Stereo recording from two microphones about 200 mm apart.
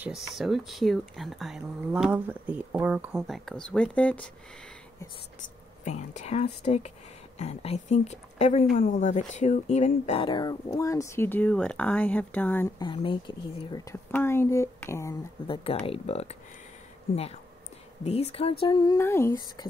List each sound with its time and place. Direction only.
0.0 s speech: centre (ahead or behind)
5.9 s speech: 35° left (ahead or behind); by 12.6 s 10° left (ahead or behind)
12.7 s speech: 25° left (ahead or behind)
15.4 s speech: 25° left (ahead or behind)